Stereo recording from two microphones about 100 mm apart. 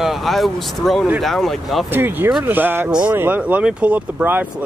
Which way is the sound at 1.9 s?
20° right (ahead or behind).